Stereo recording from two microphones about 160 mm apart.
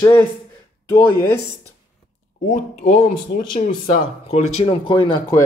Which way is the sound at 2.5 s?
55° left (ahead or behind).